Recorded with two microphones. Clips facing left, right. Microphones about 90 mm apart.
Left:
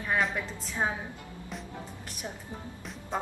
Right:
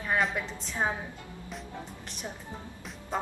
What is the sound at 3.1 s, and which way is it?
Music, centre (ahead or behind).